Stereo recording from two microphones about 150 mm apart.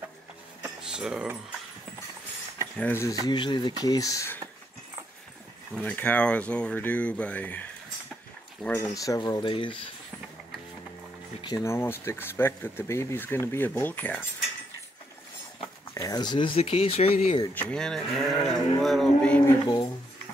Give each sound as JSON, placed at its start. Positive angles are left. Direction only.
{"t": 0.6, "sound": "a sound", "side_deg": -5}
{"t": 2.8, "sound": "speech", "side_deg": 15}
{"t": 3.3, "sound": "speech", "side_deg": 30}
{"t": 5.8, "sound": "speech", "side_deg": 10}
{"t": 8.7, "sound": "speech", "side_deg": 25}
{"t": 11.4, "sound": "speech", "side_deg": 20}
{"t": 15.9, "sound": "speech", "side_deg": 25}
{"t": 17.6, "sound": "speech", "side_deg": 5}
{"t": 19.6, "sound": "speech", "side_deg": 30}